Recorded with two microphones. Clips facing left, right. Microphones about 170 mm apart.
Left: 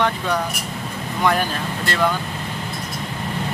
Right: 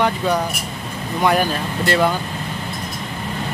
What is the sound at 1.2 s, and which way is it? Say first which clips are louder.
Speech: right 3 dB; 10° right (ahead or behind).